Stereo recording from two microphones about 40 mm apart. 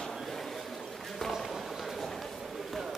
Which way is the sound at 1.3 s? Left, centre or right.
Centre.